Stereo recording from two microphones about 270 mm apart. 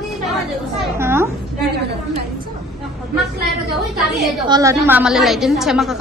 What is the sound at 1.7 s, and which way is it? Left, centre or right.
Speech, right.